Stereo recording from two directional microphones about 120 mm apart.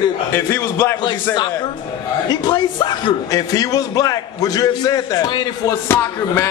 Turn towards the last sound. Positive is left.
turn(degrees=25)  # may be behind; listen again after turning